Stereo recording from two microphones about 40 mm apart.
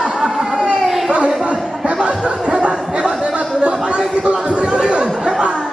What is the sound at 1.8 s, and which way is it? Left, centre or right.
Chatter, right.